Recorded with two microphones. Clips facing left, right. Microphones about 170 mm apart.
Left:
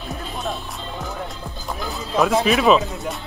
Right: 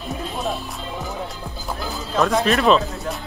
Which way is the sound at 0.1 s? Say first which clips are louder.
Right 2 dB; centre (ahead or behind).